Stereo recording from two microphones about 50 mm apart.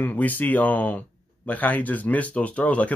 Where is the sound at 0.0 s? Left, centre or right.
Left.